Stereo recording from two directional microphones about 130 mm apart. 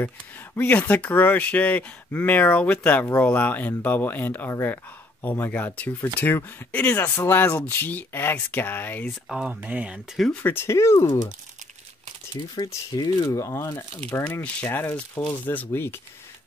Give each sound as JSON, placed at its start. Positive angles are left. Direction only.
{"t": 0.6, "sound": "speech", "side_deg": 10}
{"t": 9.3, "sound": "speech", "side_deg": -10}
{"t": 10.4, "sound": "speech", "side_deg": 15}
{"t": 12.5, "sound": "speech", "side_deg": 30}